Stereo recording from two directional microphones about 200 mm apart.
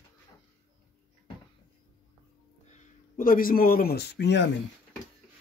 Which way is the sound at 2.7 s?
40° left (ahead or behind).